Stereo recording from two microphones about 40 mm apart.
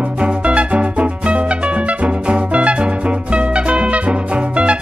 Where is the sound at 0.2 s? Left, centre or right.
Right.